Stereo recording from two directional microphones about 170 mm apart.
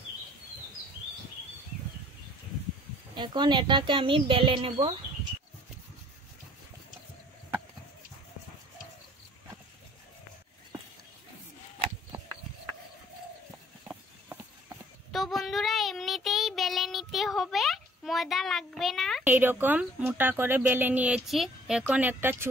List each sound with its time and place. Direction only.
3.2 s a woman's voice: 25° right (ahead or behind)
15.1 s child singing: centre (ahead or behind)
19.2 s speech: 10° right (ahead or behind)